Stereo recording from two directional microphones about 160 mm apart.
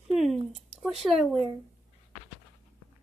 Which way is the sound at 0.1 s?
Centre (ahead or behind).